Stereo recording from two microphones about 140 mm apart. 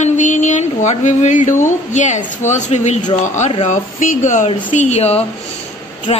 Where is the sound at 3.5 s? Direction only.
50° left (ahead or behind).